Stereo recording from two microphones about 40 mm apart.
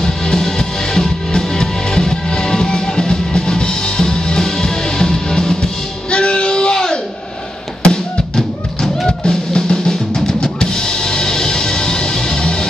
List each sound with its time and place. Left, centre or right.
0.0 s music: centre
6.1 s a sound: left
7.8 s music: left
9.0 s drum kit: centre